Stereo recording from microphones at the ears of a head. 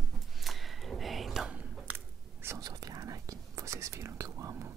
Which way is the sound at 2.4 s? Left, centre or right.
Right.